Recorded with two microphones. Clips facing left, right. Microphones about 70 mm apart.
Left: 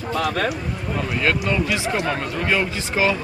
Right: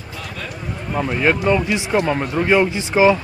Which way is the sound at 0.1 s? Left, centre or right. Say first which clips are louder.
Left 10 dB; left.